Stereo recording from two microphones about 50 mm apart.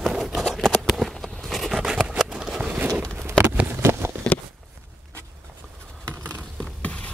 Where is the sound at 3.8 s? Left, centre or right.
Right.